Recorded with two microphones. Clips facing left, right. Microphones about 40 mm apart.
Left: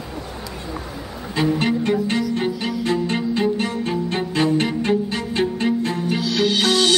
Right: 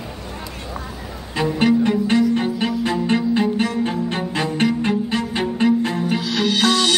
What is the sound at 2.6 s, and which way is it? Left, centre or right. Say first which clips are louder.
Music: right 1 dB; right.